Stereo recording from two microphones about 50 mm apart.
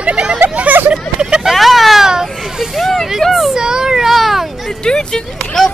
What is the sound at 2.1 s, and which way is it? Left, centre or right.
Children playing, centre.